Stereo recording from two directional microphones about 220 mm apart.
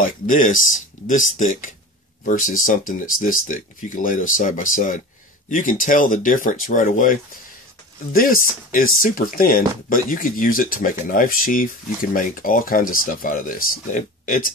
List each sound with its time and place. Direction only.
0.0 s speech: 35° left (ahead or behind)